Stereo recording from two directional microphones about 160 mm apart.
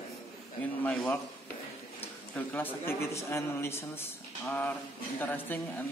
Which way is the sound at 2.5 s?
15° left (ahead or behind).